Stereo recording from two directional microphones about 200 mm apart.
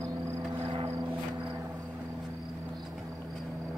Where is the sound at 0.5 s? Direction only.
30° right (ahead or behind).